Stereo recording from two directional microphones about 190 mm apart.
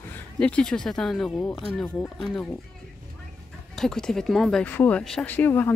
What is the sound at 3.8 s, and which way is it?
Speech, 5° left (ahead or behind).